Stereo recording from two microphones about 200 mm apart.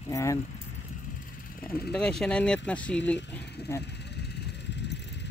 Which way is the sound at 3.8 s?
55° left (ahead or behind).